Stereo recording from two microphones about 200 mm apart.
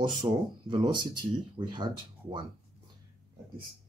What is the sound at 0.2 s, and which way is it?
Speech, 25° right (ahead or behind).